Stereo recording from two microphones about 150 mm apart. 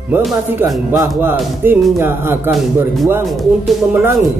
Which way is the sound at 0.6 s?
15° right (ahead or behind).